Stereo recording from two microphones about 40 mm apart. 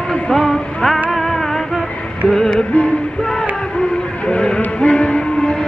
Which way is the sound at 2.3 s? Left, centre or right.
Centre.